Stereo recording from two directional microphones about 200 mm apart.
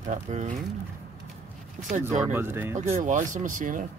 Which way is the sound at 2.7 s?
35° right (ahead or behind).